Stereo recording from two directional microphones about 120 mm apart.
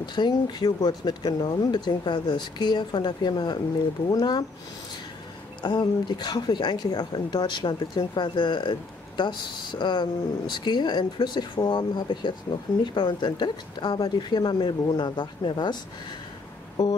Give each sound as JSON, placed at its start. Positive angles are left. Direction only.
{"t": 0.0, "sound": "speech", "side_deg": 35}
{"t": 5.6, "sound": "speech", "side_deg": 40}